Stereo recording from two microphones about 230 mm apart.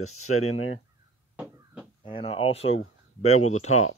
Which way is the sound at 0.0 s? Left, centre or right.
Left.